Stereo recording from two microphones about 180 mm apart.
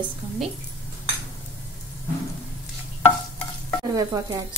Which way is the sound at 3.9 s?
20° right (ahead or behind).